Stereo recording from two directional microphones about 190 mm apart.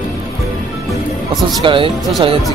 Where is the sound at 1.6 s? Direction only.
25° right (ahead or behind).